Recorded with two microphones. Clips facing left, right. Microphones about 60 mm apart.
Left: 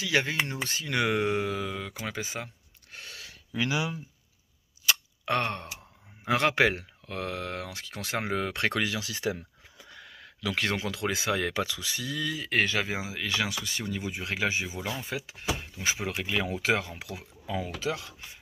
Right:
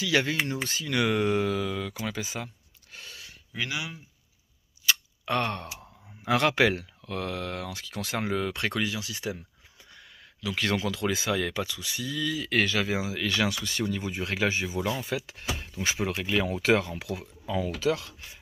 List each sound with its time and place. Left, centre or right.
0.0 s speech: left
0.7 s speech: left
2.0 s speech: left
3.1 s a sound: left
5.4 s speech: left
8.7 s speech: left
9.8 s a sound: left
10.6 s speech: left
11.5 s speech: left
12.1 s speech: left; by 18.1 s centre